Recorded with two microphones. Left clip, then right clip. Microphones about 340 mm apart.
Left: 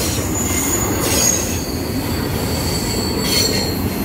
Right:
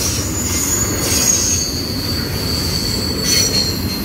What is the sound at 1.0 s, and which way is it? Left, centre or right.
Train, left.